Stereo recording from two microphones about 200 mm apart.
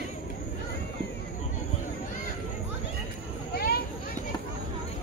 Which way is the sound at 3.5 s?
50° left (ahead or behind).